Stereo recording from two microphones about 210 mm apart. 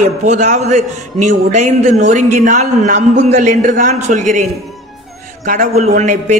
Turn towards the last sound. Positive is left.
turn(degrees=-35)  # may be behind; listen again after turning